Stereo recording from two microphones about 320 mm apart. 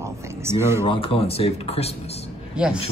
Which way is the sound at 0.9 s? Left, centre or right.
Centre.